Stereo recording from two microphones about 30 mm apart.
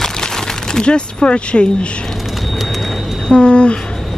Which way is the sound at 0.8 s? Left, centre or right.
Left.